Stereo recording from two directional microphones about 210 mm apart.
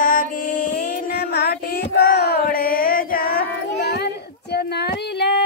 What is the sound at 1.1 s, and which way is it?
Child singing, 50° left (ahead or behind).